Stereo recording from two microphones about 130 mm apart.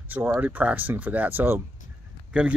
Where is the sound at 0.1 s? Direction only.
15° right (ahead or behind).